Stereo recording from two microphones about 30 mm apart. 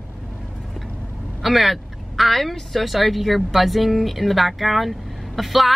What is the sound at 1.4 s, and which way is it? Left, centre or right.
Speech, centre.